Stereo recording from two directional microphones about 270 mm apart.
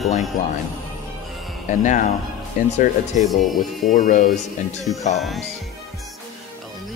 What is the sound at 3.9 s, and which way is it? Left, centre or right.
Speech, left.